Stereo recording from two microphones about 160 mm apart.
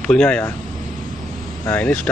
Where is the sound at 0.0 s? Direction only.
5° left (ahead or behind).